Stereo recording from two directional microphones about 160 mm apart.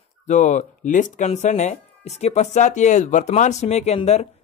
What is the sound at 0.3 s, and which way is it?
Speech, 50° left (ahead or behind).